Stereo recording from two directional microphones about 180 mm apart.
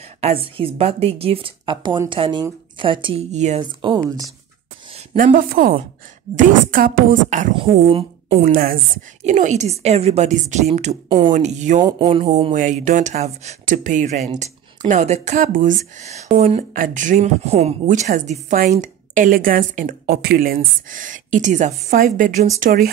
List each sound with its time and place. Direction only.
0.2 s a woman's voice: 30° right (ahead or behind)
3.8 s speech: 20° right (ahead or behind)
5.1 s speech: 50° right (ahead or behind)
8.5 s speech: 55° right (ahead or behind)
9.2 s a woman's voice: 40° right (ahead or behind)
11.1 s speech: 25° right (ahead or behind)
11.3 s a woman's voice: 40° right (ahead or behind)
11.8 s speech: 25° right (ahead or behind)
12.5 s a woman's voice: 45° right (ahead or behind)